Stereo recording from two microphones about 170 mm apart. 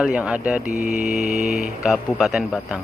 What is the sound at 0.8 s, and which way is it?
Speech, centre (ahead or behind).